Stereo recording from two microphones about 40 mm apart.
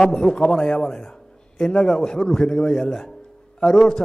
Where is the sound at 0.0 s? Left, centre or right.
Centre.